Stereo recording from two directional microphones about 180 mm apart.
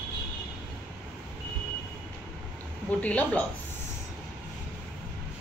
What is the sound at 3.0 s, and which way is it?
Speech, 10° left (ahead or behind).